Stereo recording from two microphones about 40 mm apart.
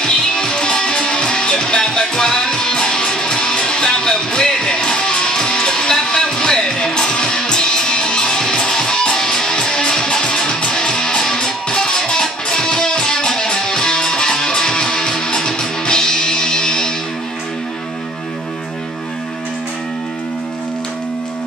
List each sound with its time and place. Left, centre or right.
0.0 s music: centre